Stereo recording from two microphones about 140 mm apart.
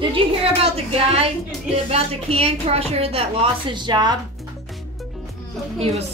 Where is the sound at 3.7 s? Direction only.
35° right (ahead or behind).